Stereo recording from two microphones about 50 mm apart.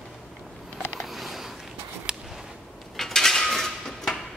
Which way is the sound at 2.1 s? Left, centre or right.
Centre.